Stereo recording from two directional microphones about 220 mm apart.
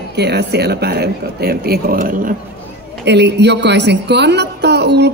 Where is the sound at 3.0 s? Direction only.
50° right (ahead or behind).